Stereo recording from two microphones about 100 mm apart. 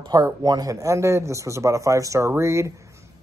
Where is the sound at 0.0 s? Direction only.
40° right (ahead or behind).